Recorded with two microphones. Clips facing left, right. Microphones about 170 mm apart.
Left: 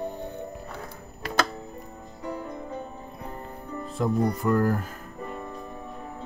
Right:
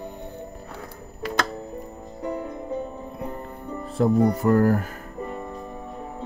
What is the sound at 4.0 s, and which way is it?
Speech, 70° right (ahead or behind).